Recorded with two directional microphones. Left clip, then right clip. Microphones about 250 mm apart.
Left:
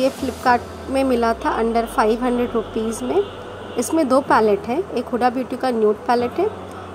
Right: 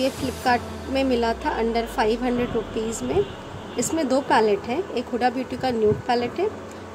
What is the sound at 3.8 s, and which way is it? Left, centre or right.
A woman's voice, centre.